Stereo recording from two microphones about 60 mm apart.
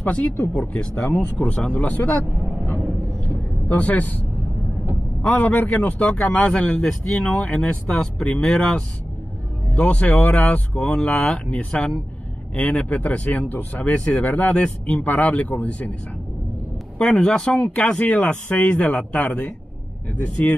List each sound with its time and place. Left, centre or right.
0.0 s speech: left
3.6 s speech: left
5.4 s speech: left
6.8 s speech: centre
7.6 s speech: centre
11.7 s speech: centre
12.6 s speech: left
14.5 s speech: centre
17.0 s speech: centre